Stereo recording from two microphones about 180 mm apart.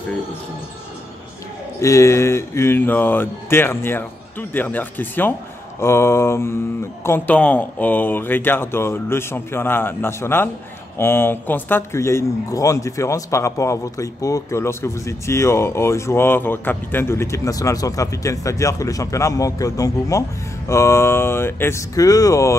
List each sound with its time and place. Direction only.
1.8 s speech: 15° left (ahead or behind)